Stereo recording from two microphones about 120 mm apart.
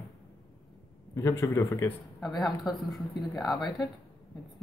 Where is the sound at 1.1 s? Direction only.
25° left (ahead or behind).